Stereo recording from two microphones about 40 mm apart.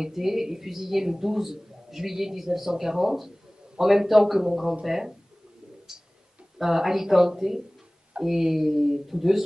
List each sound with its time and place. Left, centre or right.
0.0 s speech: centre
5.9 s a sound: right
6.6 s speech: centre